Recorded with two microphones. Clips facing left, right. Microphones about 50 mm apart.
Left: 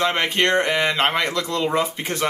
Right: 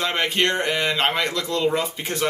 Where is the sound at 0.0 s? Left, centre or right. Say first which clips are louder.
Left 2 dB; centre.